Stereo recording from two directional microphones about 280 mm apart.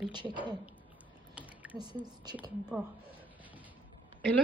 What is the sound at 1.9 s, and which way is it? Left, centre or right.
Speech, centre.